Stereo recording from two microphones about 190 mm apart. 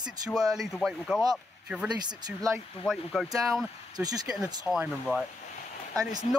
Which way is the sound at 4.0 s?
20° right (ahead or behind).